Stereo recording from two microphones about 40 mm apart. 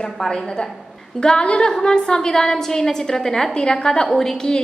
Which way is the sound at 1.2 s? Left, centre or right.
Left.